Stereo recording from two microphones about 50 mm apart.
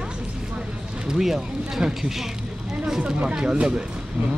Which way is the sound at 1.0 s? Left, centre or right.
Centre.